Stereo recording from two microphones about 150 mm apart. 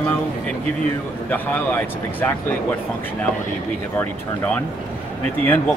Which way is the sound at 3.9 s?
10° left (ahead or behind).